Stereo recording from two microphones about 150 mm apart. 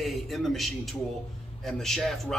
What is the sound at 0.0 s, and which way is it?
A man's voice, centre (ahead or behind).